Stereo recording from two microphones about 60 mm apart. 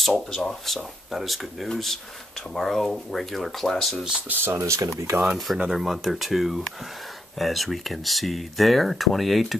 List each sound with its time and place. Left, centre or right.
0.0 s speech: centre
4.6 s speech: right
5.2 s speech: centre